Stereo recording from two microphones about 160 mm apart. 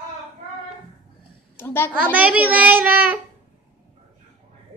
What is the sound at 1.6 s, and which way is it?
Speech, 15° left (ahead or behind).